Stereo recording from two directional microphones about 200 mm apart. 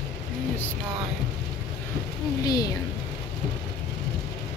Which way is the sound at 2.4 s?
20° left (ahead or behind).